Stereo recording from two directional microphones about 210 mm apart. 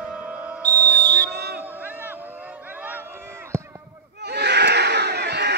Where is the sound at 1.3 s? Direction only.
50° right (ahead or behind).